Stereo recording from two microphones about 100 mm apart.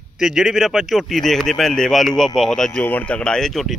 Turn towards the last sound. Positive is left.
turn(degrees=5)  # may be behind; listen again after turning